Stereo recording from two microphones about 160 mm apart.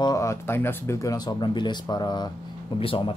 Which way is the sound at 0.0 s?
20° left (ahead or behind).